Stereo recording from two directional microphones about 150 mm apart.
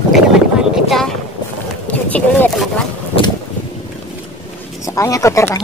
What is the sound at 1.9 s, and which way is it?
Vehicle, 10° left (ahead or behind).